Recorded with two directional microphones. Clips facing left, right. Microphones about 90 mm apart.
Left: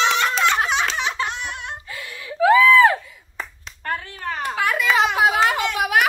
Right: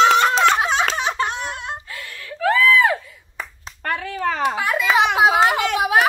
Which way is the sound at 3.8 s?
90° right.